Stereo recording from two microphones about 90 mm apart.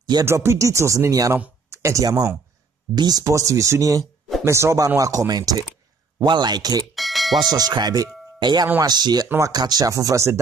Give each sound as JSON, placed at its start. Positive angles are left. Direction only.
{"t": 0.2, "sound": "speech", "side_deg": -30}
{"t": 4.0, "sound": "a sound", "side_deg": 0}
{"t": 4.5, "sound": "speech", "side_deg": -30}
{"t": 6.2, "sound": "speech", "side_deg": -55}
{"t": 7.0, "sound": "doorbell", "side_deg": 0}
{"t": 7.5, "sound": "speech", "side_deg": -50}
{"t": 8.4, "sound": "speech", "side_deg": -55}